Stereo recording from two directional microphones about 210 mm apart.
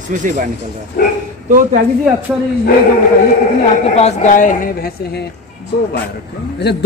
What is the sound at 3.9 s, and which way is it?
Speech, 35° left (ahead or behind).